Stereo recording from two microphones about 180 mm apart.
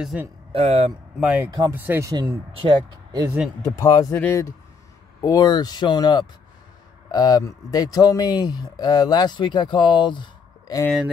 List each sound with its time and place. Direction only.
0.0 s speech: 5° right (ahead or behind)
0.5 s speech: 35° right (ahead or behind)
1.2 s speech: 10° right (ahead or behind); by 3.2 s 30° right (ahead or behind)
3.6 s a man's voice: 20° left (ahead or behind)